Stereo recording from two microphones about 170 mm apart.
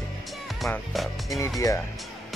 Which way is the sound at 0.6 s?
Centre (ahead or behind).